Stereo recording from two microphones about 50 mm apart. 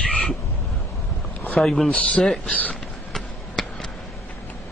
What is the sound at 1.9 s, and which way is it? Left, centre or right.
Speech, left.